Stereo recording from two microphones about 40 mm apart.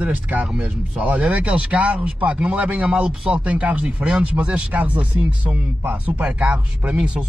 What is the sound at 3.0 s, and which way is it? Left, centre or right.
Speech, right.